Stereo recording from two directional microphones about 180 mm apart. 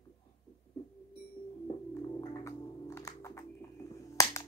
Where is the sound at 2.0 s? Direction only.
20° left (ahead or behind).